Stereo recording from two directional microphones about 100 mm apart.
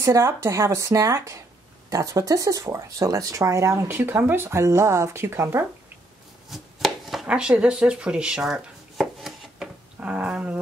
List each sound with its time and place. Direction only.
0.0 s a woman's voice: 30° right (ahead or behind)
6.5 s chopping: centre (ahead or behind)